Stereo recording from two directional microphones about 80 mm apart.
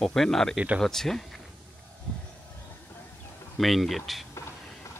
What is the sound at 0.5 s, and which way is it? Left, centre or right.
Speech, centre.